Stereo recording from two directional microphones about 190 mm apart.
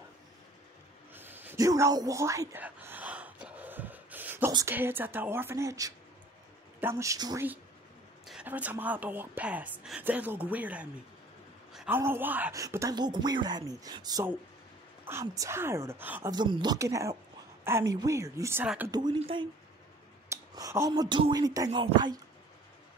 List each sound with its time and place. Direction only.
1.1 s gasp: 10° right (ahead or behind)
4.5 s a woman's voice: 15° right (ahead or behind)
8.3 s a woman's voice: 5° right (ahead or behind)
16.3 s a woman's voice: 25° right (ahead or behind)
18.9 s speech: 20° right (ahead or behind)
20.2 s speech: 15° right (ahead or behind)